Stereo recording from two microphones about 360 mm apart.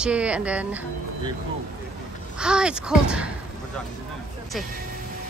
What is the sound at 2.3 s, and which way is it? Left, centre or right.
Speech, centre.